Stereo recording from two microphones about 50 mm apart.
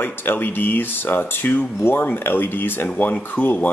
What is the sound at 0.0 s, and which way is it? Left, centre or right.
Speech, left.